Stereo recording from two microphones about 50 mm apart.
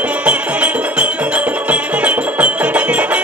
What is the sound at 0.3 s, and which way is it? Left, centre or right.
Music, right.